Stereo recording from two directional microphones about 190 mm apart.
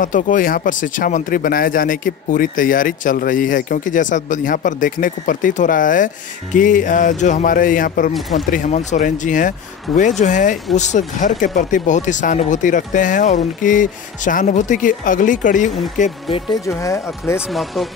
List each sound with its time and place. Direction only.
0.0 s speech: 45° left (ahead or behind)
8.1 s speech: centre (ahead or behind)
8.5 s speech: 40° left (ahead or behind)
16.0 s speech: 30° left (ahead or behind)
16.6 s speech: 15° left (ahead or behind)
17.4 s speech: centre (ahead or behind)